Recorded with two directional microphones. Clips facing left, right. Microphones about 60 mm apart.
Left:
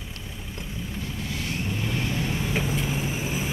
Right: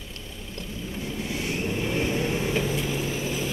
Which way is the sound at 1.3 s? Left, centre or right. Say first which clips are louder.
Right 3 dB; right.